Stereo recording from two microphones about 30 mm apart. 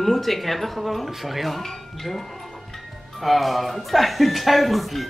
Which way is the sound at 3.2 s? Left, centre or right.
Centre.